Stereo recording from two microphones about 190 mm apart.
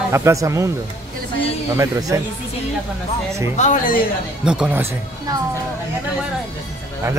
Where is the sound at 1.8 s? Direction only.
20° right (ahead or behind).